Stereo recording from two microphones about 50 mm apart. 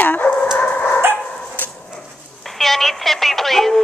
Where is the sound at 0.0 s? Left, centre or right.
Left.